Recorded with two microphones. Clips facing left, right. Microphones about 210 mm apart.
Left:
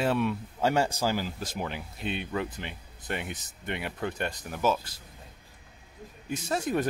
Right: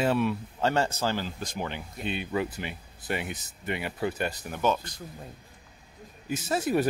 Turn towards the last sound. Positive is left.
turn(degrees=-5)  # may be behind; listen again after turning